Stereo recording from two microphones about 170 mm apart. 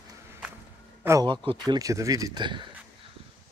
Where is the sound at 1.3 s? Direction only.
25° right (ahead or behind).